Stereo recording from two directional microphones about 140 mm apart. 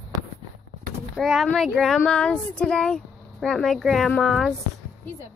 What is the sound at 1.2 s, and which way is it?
Speech, centre (ahead or behind).